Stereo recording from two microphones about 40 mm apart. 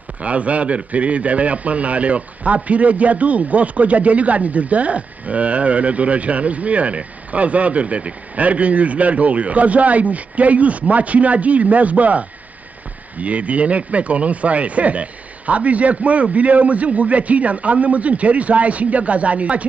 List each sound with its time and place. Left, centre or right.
0.2 s a man's voice: right